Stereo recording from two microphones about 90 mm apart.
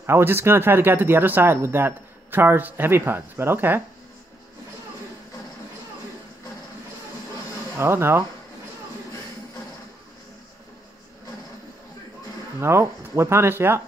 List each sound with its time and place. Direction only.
0.0 s speech: 25° right (ahead or behind)
7.8 s speech: 30° right (ahead or behind)
12.5 s speech: 30° right (ahead or behind)